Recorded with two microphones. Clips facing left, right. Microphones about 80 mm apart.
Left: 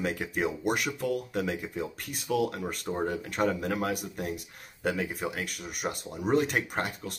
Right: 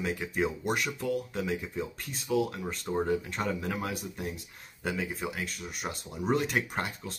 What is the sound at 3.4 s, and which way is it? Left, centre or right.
Speech, left.